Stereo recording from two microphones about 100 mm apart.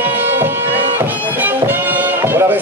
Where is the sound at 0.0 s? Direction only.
20° right (ahead or behind).